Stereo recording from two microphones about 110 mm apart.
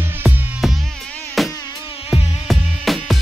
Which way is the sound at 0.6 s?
Centre (ahead or behind).